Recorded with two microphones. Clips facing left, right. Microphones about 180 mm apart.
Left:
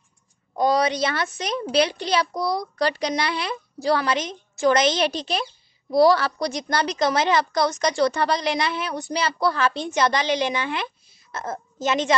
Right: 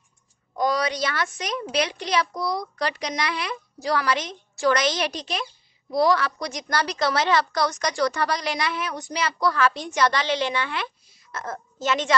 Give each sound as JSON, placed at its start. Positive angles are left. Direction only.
{"t": 0.6, "sound": "a woman's voice", "side_deg": 25}